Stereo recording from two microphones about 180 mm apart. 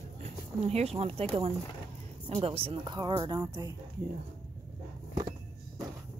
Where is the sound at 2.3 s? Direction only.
30° right (ahead or behind).